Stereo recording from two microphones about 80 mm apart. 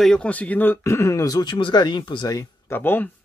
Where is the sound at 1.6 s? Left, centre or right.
Left.